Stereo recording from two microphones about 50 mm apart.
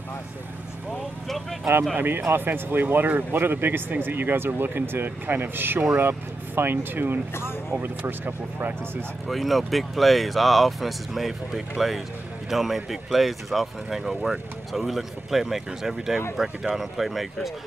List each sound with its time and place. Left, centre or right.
2.0 s speech: right
9.3 s speech: centre